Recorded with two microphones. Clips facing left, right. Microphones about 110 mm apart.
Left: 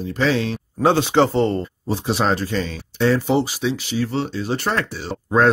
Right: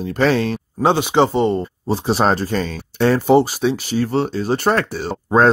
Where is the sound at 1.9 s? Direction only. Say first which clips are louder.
Right 3 dB; 40° right (ahead or behind).